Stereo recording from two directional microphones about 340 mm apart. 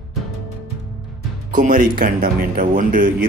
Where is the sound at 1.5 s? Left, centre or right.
Right.